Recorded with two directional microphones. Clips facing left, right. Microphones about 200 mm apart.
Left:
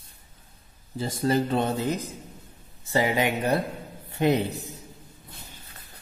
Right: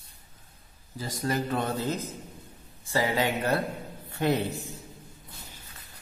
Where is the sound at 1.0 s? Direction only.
30° left (ahead or behind).